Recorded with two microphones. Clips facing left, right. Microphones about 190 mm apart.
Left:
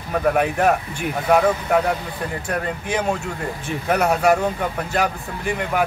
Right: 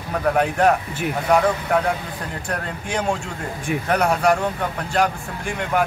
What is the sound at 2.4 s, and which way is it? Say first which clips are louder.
Speech: left 2 dB; 5° left (ahead or behind).